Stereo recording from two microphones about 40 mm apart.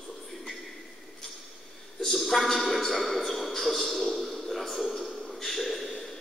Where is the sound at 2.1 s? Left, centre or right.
Centre.